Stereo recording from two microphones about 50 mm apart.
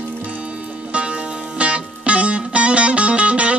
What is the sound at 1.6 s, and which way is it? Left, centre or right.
Music, right.